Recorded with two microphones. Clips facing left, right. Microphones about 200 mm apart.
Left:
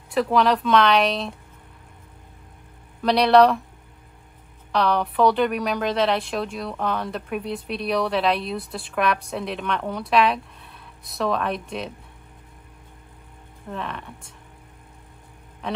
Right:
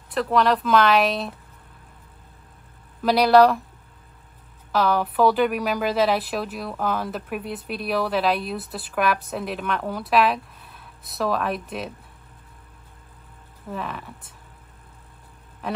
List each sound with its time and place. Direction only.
0.1 s a woman's voice: centre (ahead or behind)
3.0 s a woman's voice: 5° right (ahead or behind)
4.7 s a woman's voice: centre (ahead or behind)
13.7 s a woman's voice: centre (ahead or behind)
15.6 s a sound: 5° right (ahead or behind)